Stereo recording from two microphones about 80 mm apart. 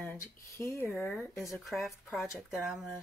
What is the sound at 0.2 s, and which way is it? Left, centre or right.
Speech, left.